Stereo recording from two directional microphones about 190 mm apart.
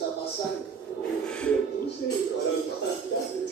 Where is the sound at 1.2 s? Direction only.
5° left (ahead or behind).